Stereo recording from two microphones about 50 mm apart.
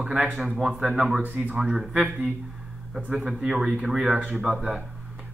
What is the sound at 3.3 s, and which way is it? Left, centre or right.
Speech, centre.